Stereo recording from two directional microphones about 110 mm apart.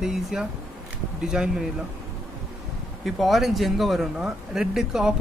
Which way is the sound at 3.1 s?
Centre (ahead or behind).